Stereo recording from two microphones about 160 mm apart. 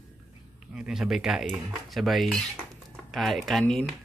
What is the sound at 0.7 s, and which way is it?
Speech, 5° right (ahead or behind).